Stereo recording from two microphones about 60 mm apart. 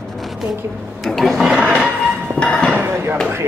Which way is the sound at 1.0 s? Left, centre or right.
Centre.